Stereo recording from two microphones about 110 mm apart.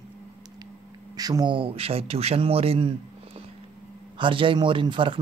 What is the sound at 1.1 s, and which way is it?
A man's voice, 35° right (ahead or behind).